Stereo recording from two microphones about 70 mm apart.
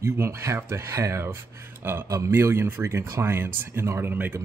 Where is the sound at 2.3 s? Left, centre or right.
Right.